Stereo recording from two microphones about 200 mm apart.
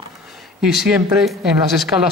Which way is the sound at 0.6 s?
Centre (ahead or behind).